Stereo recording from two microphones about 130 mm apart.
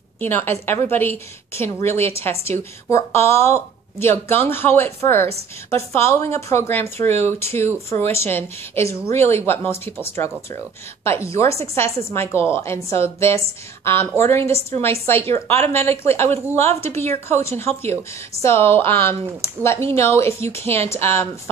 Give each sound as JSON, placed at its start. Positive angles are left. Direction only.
{"t": 0.2, "sound": "a woman's voice", "side_deg": 15}